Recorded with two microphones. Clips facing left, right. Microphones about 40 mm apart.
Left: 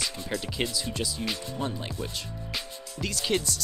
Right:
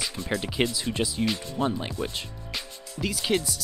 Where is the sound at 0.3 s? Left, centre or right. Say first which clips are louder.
Right 6 dB; right.